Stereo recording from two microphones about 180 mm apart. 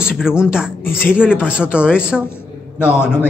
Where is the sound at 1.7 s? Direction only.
5° right (ahead or behind).